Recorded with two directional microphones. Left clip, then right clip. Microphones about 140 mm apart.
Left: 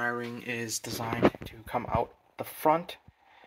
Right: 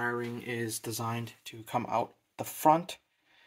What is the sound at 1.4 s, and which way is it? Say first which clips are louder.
Speech: even; 20° right (ahead or behind).